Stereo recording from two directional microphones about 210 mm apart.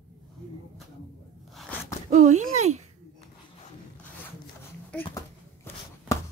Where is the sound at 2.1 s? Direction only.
35° right (ahead or behind).